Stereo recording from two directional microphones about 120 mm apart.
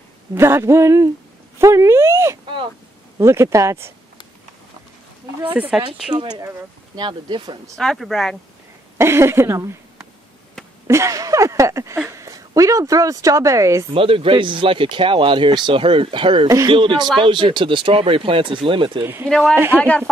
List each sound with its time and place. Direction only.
0.3 s a sound: 20° right (ahead or behind)
5.4 s speech: 15° right (ahead or behind)
6.1 s speech: 40° right (ahead or behind)
7.7 s speech: centre (ahead or behind)
8.9 s speech: 20° right (ahead or behind)
10.9 s a sound: 25° right (ahead or behind)
12.1 s a woman's voice: 25° right (ahead or behind)
13.9 s speech: 50° right (ahead or behind)
19.2 s speech: 5° left (ahead or behind)
19.5 s a sound: 20° right (ahead or behind)